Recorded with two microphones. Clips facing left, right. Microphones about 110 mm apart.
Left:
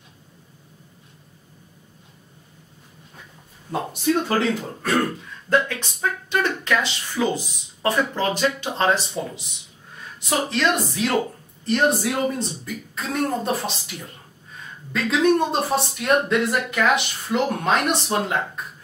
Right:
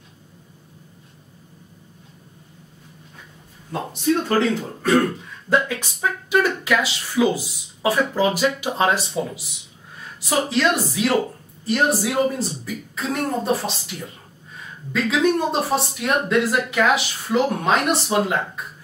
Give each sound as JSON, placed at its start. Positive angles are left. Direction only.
{"t": 4.3, "sound": "speech", "side_deg": 0}